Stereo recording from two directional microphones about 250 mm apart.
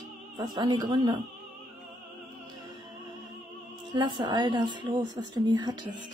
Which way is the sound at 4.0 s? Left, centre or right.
Centre.